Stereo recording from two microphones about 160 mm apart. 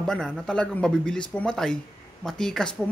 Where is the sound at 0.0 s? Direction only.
5° left (ahead or behind).